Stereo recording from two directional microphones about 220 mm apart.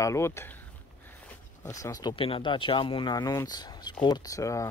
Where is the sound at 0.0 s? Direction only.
15° left (ahead or behind).